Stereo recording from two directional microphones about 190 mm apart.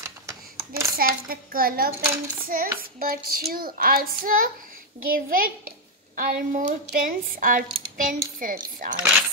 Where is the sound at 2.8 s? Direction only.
50° right (ahead or behind).